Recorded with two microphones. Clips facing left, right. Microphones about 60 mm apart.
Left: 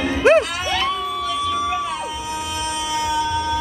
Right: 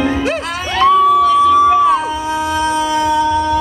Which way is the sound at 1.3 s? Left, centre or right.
Right.